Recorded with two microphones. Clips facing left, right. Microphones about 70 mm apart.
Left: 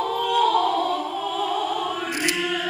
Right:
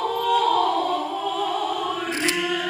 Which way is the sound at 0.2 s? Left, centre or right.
Centre.